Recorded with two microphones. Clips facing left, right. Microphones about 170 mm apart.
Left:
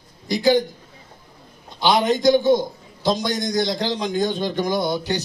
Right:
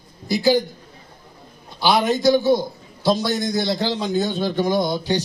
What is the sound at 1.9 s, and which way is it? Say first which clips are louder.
A man's voice: even; 20° left (ahead or behind).